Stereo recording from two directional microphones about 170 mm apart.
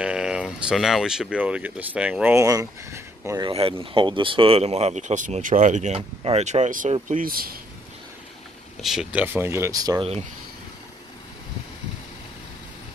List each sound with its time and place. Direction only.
0.0 s speech: 5° right (ahead or behind)
3.4 s speech: 30° right (ahead or behind); by 7.3 s 50° right (ahead or behind)
8.8 s speech: 5° right (ahead or behind); by 10.0 s 20° right (ahead or behind)